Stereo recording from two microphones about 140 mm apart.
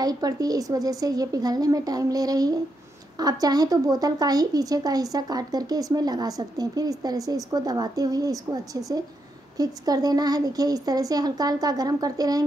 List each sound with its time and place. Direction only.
0.0 s speech: 25° right (ahead or behind)
9.6 s speech: 30° right (ahead or behind)